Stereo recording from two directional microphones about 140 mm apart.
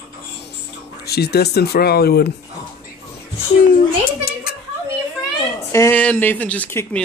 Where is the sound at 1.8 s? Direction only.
90° left.